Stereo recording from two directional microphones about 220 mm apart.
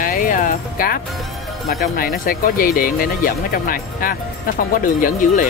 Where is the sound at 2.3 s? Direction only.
40° left (ahead or behind).